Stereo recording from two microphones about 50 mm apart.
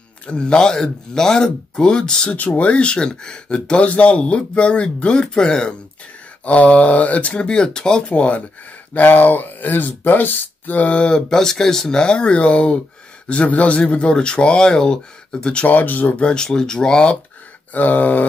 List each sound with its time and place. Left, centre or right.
0.3 s speech: centre
2.3 s speech: left
6.4 s speech: left
8.1 s speech: left
8.9 s speech: left
11.0 s speech: centre
15.5 s speech: left
16.2 s speech: centre
17.7 s speech: left